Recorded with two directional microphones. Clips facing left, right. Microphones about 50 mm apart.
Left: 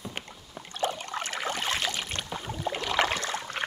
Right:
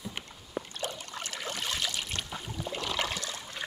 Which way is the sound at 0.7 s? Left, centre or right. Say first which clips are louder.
Left 7 dB; left.